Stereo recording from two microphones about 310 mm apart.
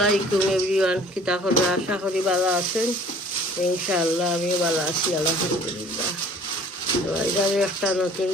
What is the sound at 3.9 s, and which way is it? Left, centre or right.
Speech, centre.